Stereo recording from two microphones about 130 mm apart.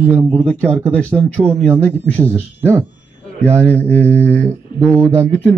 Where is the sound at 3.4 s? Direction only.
10° left (ahead or behind).